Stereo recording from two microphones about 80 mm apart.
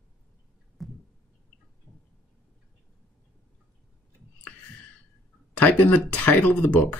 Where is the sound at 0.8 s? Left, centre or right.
Centre.